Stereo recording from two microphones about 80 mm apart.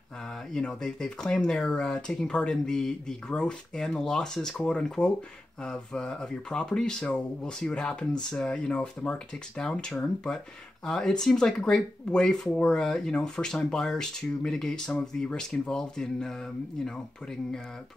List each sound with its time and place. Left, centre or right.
0.5 s speech: centre